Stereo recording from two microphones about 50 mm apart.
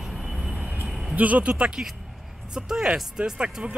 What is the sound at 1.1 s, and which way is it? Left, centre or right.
Speech, right.